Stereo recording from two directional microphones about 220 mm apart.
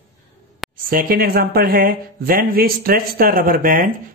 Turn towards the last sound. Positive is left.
turn(degrees=-40)  # may be behind; listen again after turning